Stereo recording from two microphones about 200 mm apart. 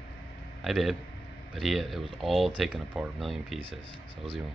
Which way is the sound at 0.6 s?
Centre (ahead or behind).